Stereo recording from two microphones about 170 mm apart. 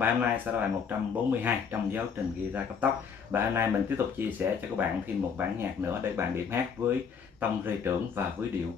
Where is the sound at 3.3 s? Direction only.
10° right (ahead or behind).